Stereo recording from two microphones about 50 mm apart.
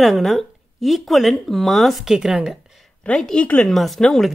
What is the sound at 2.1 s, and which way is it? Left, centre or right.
Speech, centre.